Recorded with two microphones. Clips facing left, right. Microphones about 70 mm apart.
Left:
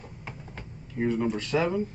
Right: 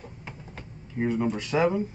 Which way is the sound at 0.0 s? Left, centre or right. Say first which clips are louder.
Even; centre.